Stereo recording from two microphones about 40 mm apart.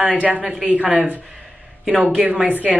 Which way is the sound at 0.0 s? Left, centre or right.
Right.